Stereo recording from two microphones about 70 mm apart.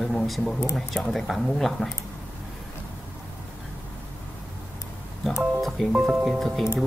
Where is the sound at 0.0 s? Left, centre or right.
Centre.